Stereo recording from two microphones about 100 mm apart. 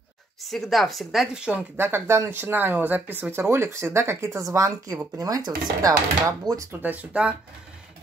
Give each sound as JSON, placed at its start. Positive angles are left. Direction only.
{"t": 0.4, "sound": "a woman's voice", "side_deg": 0}
{"t": 1.8, "sound": "speech", "side_deg": -25}
{"t": 6.7, "sound": "speech", "side_deg": -20}